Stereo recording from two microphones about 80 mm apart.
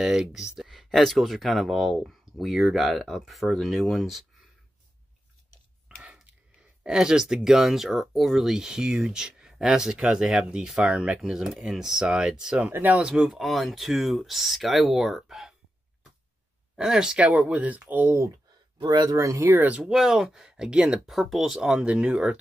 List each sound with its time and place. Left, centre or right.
0.0 s speech: centre
5.9 s scissors: centre
6.8 s speech: centre
12.6 s speech: centre
13.0 s speech: centre
16.7 s speech: centre
18.8 s speech: right
19.1 s speech: right
19.4 s speech: right
19.8 s speech: centre